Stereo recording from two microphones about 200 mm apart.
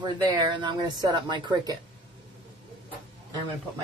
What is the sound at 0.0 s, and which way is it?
Speech, 25° right (ahead or behind).